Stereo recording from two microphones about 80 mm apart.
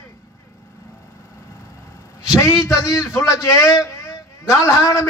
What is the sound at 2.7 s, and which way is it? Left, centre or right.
A man's voice, left.